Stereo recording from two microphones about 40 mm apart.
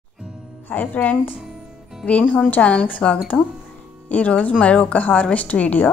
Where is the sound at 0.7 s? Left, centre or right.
Left.